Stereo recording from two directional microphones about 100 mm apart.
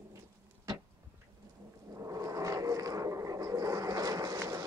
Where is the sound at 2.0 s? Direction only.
35° right (ahead or behind).